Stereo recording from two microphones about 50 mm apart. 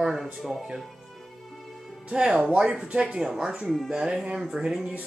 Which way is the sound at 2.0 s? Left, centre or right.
Right.